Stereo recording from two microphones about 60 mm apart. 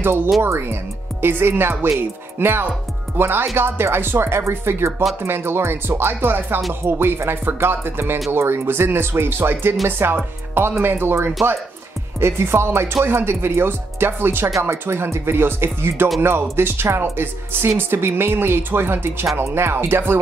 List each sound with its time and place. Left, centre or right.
0.5 s speech: right